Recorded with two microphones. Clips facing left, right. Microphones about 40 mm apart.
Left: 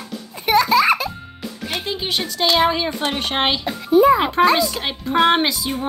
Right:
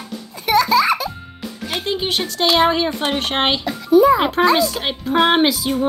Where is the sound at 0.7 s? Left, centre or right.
Left.